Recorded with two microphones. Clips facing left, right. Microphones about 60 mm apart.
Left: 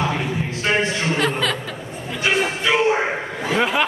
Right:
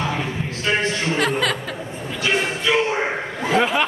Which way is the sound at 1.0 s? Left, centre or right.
Centre.